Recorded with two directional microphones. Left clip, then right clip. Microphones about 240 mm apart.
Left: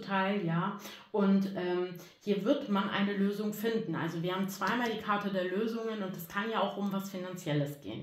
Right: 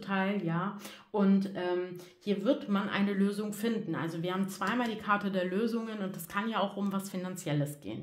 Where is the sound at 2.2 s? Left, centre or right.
Right.